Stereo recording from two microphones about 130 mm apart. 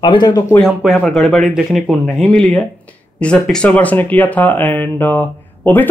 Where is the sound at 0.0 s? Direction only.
35° left (ahead or behind).